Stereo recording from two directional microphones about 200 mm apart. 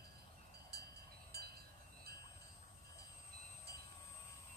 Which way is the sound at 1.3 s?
55° right (ahead or behind).